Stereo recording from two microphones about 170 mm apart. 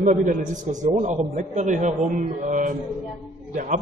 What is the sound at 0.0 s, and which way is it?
A man's voice, 50° right (ahead or behind).